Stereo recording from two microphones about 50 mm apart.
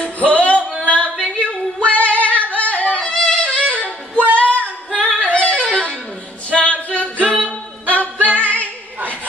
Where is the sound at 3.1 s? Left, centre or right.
Centre.